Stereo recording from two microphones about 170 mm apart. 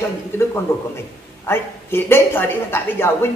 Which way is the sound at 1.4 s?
15° left (ahead or behind).